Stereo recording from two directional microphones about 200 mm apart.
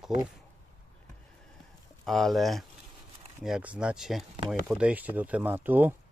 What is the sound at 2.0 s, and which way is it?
Speech, centre (ahead or behind).